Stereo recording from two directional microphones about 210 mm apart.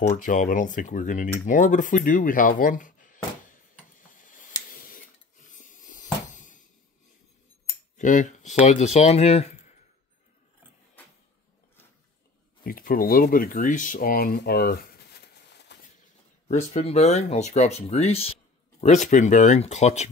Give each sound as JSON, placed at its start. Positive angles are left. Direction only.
{"t": 0.2, "sound": "speech", "side_deg": 40}
{"t": 4.1, "sound": "finger snapping", "side_deg": 40}
{"t": 4.6, "sound": "a sound", "side_deg": 40}
{"t": 7.6, "sound": "cutlery", "side_deg": 35}
{"t": 8.6, "sound": "speech", "side_deg": 30}
{"t": 12.6, "sound": "speech", "side_deg": 45}
{"t": 15.7, "sound": "a sound", "side_deg": 55}
{"t": 16.4, "sound": "speech", "side_deg": 30}